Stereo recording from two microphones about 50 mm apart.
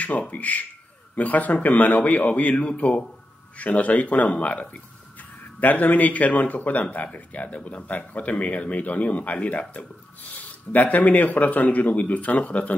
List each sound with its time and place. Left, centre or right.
0.3 s speech: left